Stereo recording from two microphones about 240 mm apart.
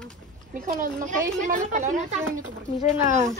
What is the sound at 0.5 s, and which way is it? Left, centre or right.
Speech, right.